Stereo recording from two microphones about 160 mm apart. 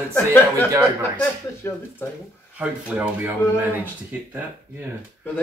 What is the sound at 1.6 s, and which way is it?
Speech, 15° left (ahead or behind).